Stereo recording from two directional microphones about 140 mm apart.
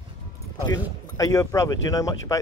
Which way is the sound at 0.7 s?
25° left (ahead or behind).